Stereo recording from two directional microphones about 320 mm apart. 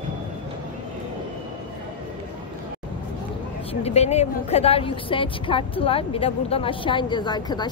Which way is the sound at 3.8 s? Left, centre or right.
Centre.